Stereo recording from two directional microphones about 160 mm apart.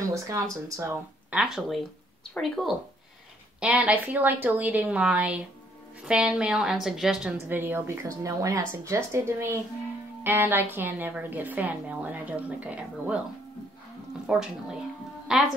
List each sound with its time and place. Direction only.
0.0 s speech: 20° right (ahead or behind)
1.3 s a woman's voice: 5° right (ahead or behind)
7.4 s a woman's voice: 15° right (ahead or behind)
14.2 s speech: 5° right (ahead or behind)